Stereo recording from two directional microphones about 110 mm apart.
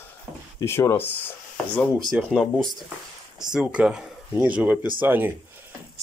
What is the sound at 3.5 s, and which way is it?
Speech, 5° right (ahead or behind).